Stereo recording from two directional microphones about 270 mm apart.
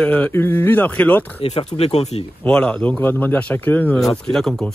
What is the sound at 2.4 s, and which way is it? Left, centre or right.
A man's voice, centre.